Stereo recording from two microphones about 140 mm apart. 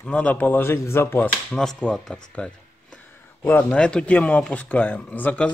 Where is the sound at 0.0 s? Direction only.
10° left (ahead or behind).